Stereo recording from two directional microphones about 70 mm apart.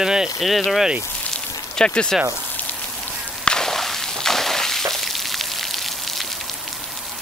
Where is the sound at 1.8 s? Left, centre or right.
Centre.